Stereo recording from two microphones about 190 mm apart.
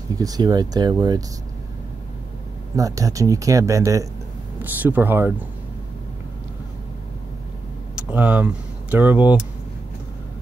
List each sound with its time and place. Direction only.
0.2 s speech: 20° right (ahead or behind)
2.7 s speech: 15° right (ahead or behind)
7.9 s a sound: 10° right (ahead or behind)
8.9 s speech: 10° right (ahead or behind)